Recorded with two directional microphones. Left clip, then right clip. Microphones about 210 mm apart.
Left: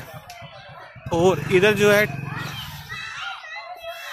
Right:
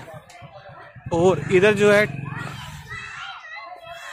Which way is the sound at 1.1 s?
10° right (ahead or behind).